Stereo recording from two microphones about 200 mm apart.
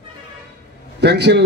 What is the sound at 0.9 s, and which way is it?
Speech, 55° right (ahead or behind).